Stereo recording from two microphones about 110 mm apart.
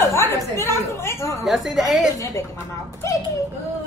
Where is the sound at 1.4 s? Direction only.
Centre (ahead or behind).